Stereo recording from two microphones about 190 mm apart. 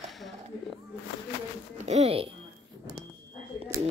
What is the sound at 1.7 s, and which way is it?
Speech, 35° right (ahead or behind).